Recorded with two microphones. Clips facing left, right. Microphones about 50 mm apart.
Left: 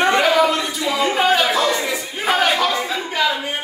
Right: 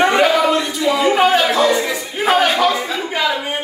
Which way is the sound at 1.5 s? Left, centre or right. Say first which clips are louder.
Right 4 dB; centre.